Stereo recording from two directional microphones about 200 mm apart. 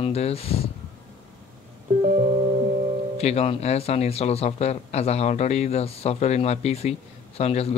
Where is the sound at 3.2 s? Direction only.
30° left (ahead or behind).